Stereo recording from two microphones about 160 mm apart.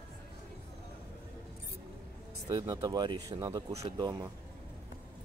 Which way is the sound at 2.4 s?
20° right (ahead or behind).